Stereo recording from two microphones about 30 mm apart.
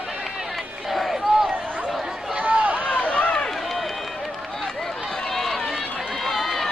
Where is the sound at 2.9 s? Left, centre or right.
Left.